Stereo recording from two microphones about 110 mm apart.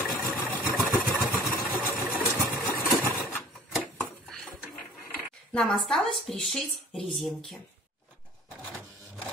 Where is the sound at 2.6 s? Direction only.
20° left (ahead or behind).